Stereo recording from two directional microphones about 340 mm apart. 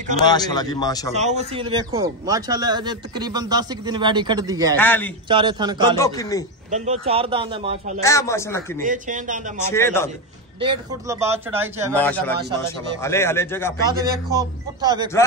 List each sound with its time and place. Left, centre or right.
0.2 s speech: centre
1.1 s a man's voice: centre
4.7 s a man's voice: centre
5.3 s a man's voice: centre
5.9 s speech: centre
6.7 s a man's voice: centre
8.0 s speech: centre
8.8 s speech: right
9.7 s speech: centre
10.6 s a man's voice: centre
11.9 s a man's voice: centre
14.3 s a man's voice: centre